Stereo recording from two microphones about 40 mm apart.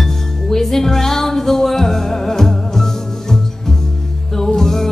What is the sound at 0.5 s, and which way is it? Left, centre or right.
Music, centre.